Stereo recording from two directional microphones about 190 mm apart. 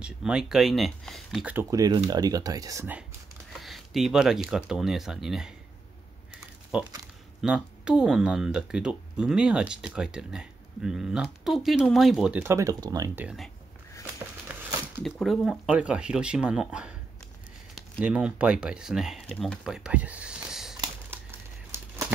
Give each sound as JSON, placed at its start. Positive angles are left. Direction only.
{"t": 0.0, "sound": "speech", "side_deg": -5}
{"t": 3.6, "sound": "a sound", "side_deg": 0}
{"t": 4.5, "sound": "speech", "side_deg": -5}
{"t": 6.7, "sound": "speech", "side_deg": -5}
{"t": 12.5, "sound": "speech", "side_deg": -20}
{"t": 14.0, "sound": "a sound", "side_deg": -10}
{"t": 15.0, "sound": "speech", "side_deg": 5}
{"t": 20.8, "sound": "crumpling", "side_deg": -15}